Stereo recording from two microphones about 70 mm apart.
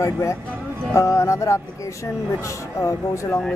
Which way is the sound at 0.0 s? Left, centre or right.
Left.